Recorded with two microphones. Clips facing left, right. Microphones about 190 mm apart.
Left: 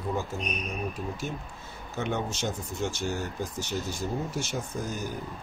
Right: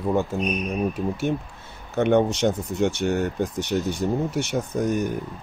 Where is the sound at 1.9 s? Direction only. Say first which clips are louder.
Right 12 dB; 60° right (ahead or behind).